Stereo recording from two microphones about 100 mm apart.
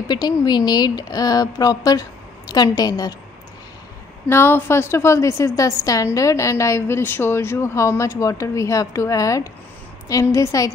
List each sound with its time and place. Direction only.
0.1 s a woman's voice: 45° left (ahead or behind)
4.3 s a woman's voice: 25° left (ahead or behind)